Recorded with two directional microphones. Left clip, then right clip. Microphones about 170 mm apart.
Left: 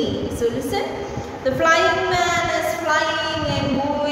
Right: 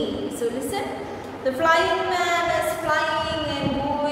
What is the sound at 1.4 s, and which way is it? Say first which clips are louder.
Speech: left 3 dB; 5° left (ahead or behind).